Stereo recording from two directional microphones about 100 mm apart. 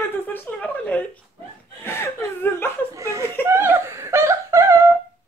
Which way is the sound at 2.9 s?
35° right (ahead or behind).